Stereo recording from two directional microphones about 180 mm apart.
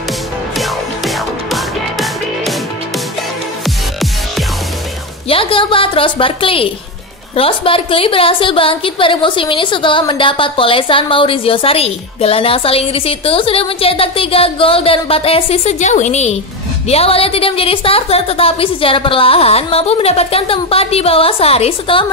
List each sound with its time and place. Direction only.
0.6 s music: centre (ahead or behind)
3.6 s music: centre (ahead or behind)
5.3 s a woman's voice: 30° left (ahead or behind)